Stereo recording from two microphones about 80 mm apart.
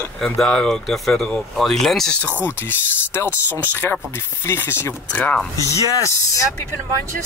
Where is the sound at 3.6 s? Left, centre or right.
Left.